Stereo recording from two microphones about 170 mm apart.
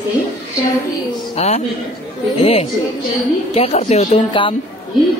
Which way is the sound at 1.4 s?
40° left (ahead or behind).